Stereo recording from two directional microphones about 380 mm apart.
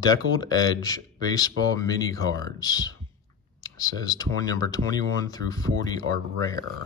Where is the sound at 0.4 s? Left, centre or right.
Centre.